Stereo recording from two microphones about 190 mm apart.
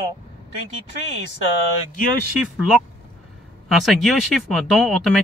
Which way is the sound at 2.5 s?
Centre (ahead or behind).